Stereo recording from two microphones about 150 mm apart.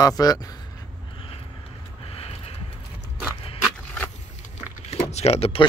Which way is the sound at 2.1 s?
45° left (ahead or behind).